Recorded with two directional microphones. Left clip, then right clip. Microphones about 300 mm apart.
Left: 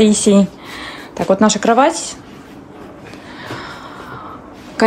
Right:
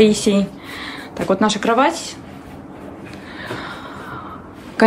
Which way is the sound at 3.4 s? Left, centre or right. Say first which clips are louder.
Even; centre.